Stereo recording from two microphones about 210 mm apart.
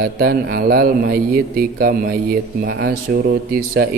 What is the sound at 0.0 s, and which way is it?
Speech, 45° right (ahead or behind).